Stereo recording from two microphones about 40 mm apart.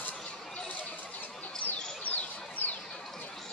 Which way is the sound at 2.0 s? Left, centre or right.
Left.